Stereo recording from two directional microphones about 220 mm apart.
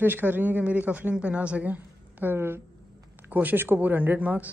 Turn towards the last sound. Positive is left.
turn(degrees=-5)  # may be behind; listen again after turning